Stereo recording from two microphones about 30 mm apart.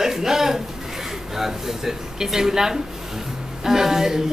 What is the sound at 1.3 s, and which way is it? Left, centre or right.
Speech, centre.